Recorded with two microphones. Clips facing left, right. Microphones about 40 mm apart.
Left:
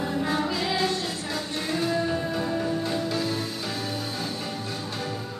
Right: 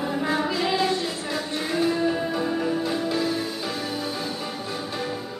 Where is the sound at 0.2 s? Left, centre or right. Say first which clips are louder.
Right 3 dB; centre.